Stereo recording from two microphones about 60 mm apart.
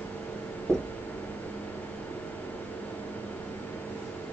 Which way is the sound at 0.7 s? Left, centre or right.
Left.